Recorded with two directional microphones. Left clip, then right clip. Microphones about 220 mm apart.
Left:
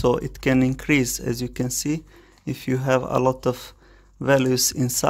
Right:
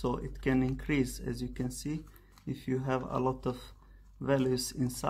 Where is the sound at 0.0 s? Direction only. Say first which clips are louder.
Left 13 dB; 40° left (ahead or behind).